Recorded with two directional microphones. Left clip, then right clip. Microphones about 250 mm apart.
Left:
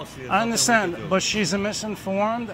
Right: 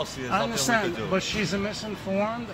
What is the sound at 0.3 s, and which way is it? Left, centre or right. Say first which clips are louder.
Speech: left 5 dB; left.